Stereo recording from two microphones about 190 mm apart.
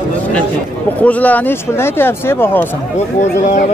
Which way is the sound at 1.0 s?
10° left (ahead or behind).